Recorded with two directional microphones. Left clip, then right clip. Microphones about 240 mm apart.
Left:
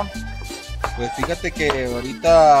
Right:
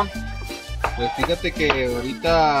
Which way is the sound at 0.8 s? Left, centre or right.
Centre.